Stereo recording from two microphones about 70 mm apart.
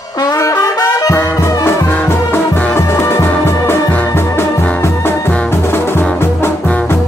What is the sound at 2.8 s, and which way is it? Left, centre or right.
Music, left.